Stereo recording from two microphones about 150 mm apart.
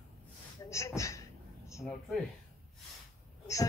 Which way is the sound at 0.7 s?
20° left (ahead or behind).